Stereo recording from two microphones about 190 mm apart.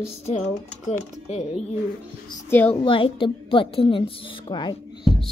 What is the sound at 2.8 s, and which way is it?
A woman's voice, 30° left (ahead or behind).